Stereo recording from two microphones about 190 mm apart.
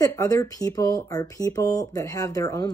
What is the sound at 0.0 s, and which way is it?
Speech, 15° left (ahead or behind).